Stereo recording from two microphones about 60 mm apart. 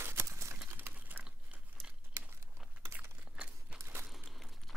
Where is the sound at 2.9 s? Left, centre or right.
Centre.